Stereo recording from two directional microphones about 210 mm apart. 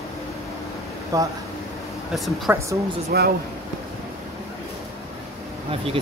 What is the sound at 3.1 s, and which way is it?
Speech, 50° right (ahead or behind).